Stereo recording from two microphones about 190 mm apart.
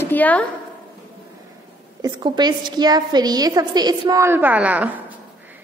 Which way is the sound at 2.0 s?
20° right (ahead or behind).